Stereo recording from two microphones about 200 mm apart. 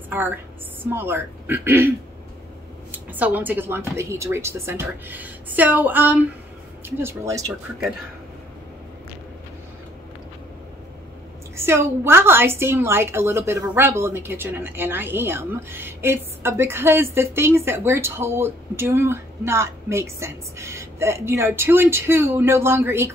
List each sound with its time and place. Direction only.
0.1 s a woman's voice: 10° right (ahead or behind)
2.9 s a woman's voice: 10° right (ahead or behind)
11.5 s a woman's voice: 10° right (ahead or behind)